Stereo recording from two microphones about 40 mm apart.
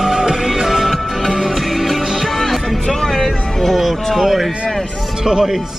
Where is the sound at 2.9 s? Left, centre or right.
Centre.